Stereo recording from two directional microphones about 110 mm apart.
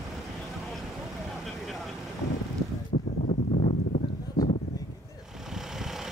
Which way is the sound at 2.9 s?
70° left (ahead or behind).